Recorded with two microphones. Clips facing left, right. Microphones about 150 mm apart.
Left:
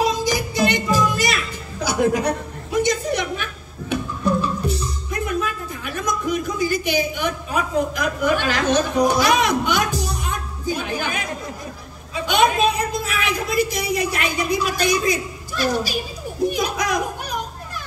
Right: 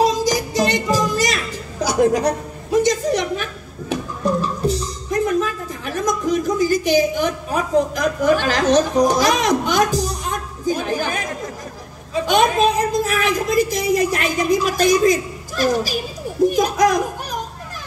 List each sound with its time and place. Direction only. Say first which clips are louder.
0.0 s music: right 3 dB; 40° right (ahead or behind)
12.1 s a woman's voice: right 2 dB; 40° right (ahead or behind)